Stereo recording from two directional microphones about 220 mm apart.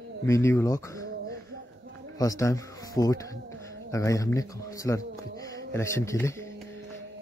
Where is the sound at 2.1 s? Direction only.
15° left (ahead or behind).